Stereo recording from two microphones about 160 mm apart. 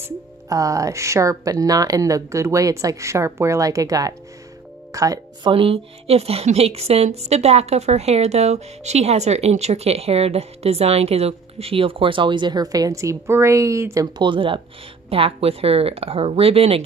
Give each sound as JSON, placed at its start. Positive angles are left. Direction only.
{"t": 0.0, "sound": "speech", "side_deg": -20}
{"t": 5.5, "sound": "a woman's voice", "side_deg": -35}